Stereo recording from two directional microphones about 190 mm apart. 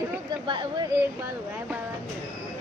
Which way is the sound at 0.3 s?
25° right (ahead or behind).